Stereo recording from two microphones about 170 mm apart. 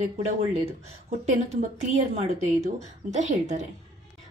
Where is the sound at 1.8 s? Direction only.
40° right (ahead or behind).